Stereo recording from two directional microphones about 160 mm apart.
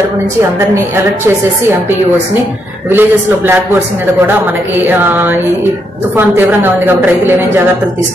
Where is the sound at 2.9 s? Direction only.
15° right (ahead or behind).